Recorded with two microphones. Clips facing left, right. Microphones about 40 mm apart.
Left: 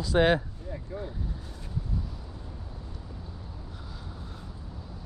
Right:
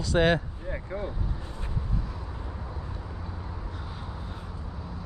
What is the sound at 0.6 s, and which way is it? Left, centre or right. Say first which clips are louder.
Vehicle: right 4 dB; right.